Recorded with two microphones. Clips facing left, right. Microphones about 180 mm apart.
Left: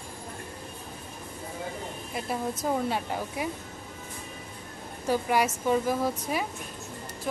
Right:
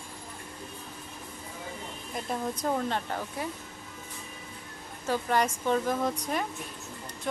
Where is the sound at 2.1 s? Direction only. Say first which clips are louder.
Left 1 dB; 5° left (ahead or behind).